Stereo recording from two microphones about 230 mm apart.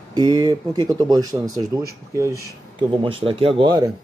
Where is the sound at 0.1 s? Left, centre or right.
Centre.